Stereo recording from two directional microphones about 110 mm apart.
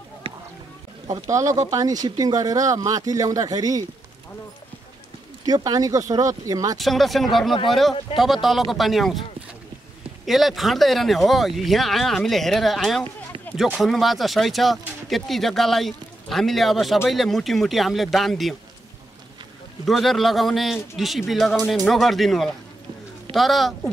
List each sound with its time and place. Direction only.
0.2 s a sound: 55° right (ahead or behind)
1.0 s speech: 35° right (ahead or behind)
5.4 s speech: 35° right (ahead or behind)
6.8 s speech: centre (ahead or behind)
10.2 s speech: centre (ahead or behind)
19.8 s speech: centre (ahead or behind)